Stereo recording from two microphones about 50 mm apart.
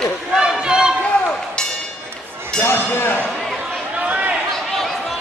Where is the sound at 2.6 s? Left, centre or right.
Left.